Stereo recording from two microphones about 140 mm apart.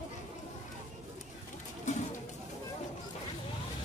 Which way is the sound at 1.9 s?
60° left (ahead or behind).